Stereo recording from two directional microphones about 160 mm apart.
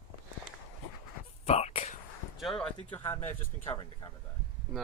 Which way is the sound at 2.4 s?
5° left (ahead or behind).